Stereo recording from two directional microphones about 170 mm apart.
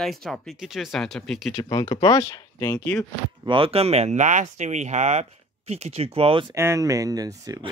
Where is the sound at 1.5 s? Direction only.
25° left (ahead or behind).